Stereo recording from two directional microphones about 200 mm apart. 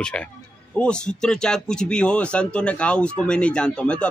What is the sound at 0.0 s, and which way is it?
Speech, 5° left (ahead or behind).